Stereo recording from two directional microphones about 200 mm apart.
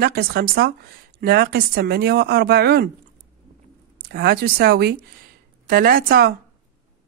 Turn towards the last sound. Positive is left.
turn(degrees=-50)  # may be behind; listen again after turning